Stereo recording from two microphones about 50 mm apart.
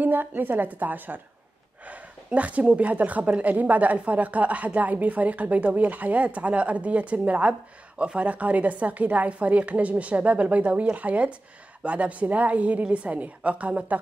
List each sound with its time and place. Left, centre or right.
0.0 s a woman's voice: right
1.9 s speech: right